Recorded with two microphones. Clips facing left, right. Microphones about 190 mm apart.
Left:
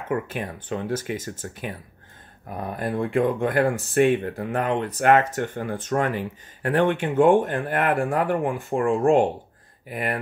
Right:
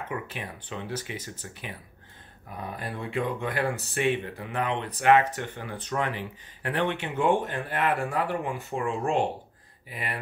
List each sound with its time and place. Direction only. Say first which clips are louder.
0.1 s speech: left 13 dB; 50° left (ahead or behind)